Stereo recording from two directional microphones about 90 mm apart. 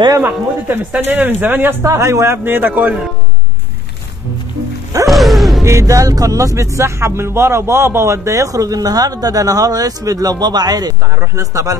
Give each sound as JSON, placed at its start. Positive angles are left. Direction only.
{"t": 0.7, "sound": "speech", "side_deg": -20}
{"t": 5.0, "sound": "music", "side_deg": 0}
{"t": 5.6, "sound": "speech", "side_deg": -35}
{"t": 11.1, "sound": "speech", "side_deg": -35}